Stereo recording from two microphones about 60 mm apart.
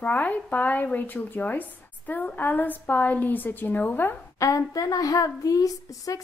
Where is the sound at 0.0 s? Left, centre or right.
Left.